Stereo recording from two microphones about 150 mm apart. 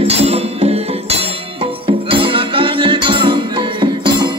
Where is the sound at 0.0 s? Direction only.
45° right (ahead or behind).